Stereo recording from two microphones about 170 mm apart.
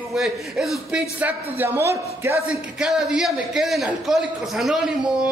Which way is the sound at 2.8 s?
5° right (ahead or behind).